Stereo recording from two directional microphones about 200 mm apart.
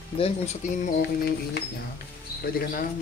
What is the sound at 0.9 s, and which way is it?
Speech, 50° left (ahead or behind).